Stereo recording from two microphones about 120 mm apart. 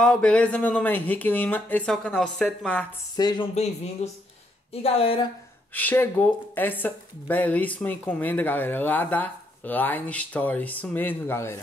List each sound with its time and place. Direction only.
0.0 s speech: 5° left (ahead or behind)
3.2 s speech: 35° left (ahead or behind)
3.5 s speech: 65° left (ahead or behind)
4.8 s speech: 55° left (ahead or behind)
5.7 s speech: 15° left (ahead or behind)